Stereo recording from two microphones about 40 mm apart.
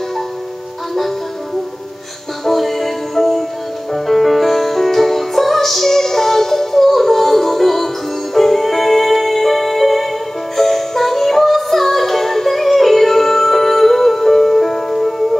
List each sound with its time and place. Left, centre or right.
2.4 s music: centre